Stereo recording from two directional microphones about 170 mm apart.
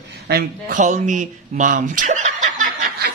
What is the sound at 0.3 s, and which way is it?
Speech, 65° right (ahead or behind).